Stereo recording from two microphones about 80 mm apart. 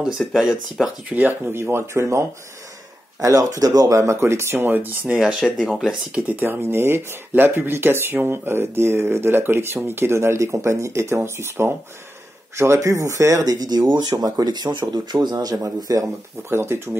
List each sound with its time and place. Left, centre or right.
0.2 s speech: centre
1.1 s speech: right
5.4 s speech: centre
5.9 s speech: centre; by 15.3 s right
15.3 s speech: right
16.4 s speech: right